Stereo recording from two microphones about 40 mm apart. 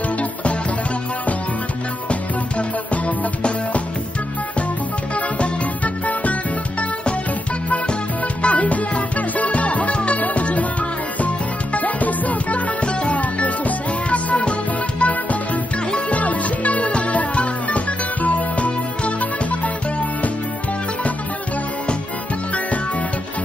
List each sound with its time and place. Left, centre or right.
8.4 s music: left
12.8 s music: left
16.1 s music: left